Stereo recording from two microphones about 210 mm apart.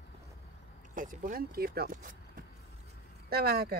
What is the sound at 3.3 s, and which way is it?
Speech, 45° right (ahead or behind).